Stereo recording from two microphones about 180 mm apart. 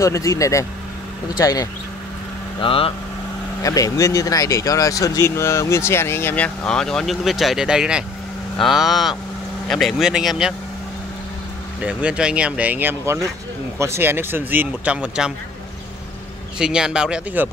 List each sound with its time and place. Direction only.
0.0 s speech: 15° left (ahead or behind)
2.6 s speech: 30° left (ahead or behind)
3.6 s speech: 20° left (ahead or behind); by 10.5 s 5° right (ahead or behind)
11.8 s speech: 5° right (ahead or behind)
16.5 s speech: 5° right (ahead or behind)